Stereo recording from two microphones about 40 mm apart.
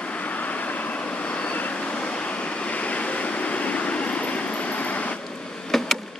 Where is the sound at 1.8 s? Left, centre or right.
Left.